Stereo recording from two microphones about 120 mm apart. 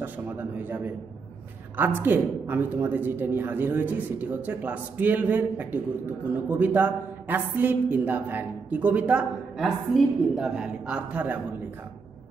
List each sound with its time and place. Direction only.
0.0 s a woman's voice: 15° right (ahead or behind)